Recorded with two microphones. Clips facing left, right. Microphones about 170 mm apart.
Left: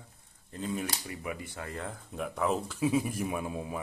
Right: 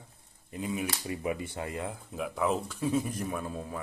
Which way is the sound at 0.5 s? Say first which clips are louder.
Right 1 dB; 10° right (ahead or behind).